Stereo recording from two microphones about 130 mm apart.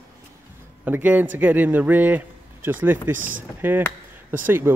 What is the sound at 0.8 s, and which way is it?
Speech, 15° right (ahead or behind).